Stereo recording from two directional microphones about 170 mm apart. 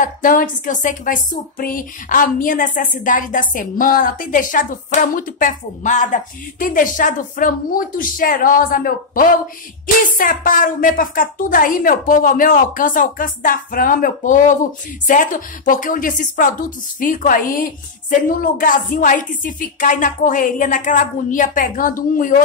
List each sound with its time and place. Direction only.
0.0 s a woman's voice: 55° left (ahead or behind)